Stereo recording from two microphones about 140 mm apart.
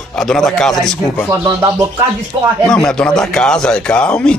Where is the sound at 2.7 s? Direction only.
5° left (ahead or behind).